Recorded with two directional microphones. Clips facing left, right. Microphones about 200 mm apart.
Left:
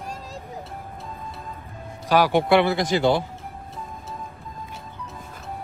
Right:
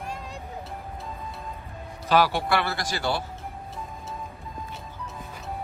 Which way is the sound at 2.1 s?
15° left (ahead or behind).